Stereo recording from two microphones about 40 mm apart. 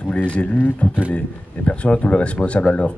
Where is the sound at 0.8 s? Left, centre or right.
Left.